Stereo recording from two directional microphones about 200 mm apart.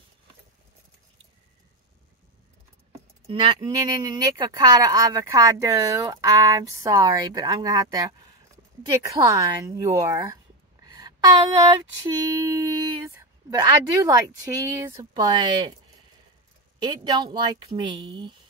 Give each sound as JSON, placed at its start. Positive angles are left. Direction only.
{"t": 3.3, "sound": "a woman's voice", "side_deg": -25}
{"t": 16.8, "sound": "a woman's voice", "side_deg": -20}